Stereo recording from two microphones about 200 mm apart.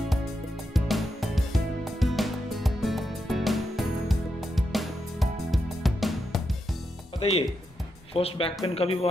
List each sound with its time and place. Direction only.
0.7 s music: centre (ahead or behind)
7.2 s speech: 30° left (ahead or behind)